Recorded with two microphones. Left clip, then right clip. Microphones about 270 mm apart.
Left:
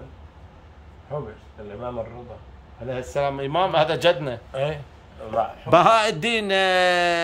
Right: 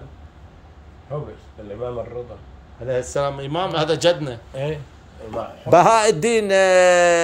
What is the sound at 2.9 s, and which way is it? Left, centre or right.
A man's voice, centre.